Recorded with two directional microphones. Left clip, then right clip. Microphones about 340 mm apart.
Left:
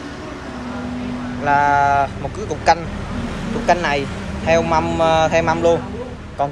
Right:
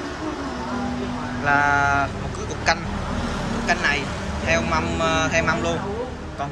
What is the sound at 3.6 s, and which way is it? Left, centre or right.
Speech, centre.